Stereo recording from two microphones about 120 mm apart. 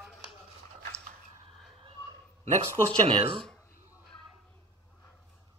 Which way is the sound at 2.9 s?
50° right (ahead or behind).